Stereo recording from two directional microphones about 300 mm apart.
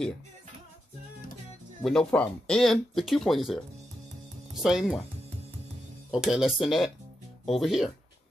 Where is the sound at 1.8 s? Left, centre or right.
Centre.